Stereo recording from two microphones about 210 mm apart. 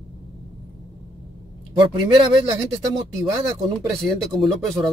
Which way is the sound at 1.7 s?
20° right (ahead or behind).